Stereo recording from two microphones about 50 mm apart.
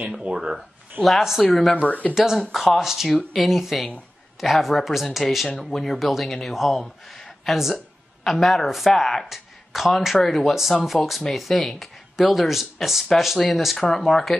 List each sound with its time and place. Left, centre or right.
0.2 s speech: centre
1.0 s speech: centre
1.8 s speech: left
2.1 s speech: centre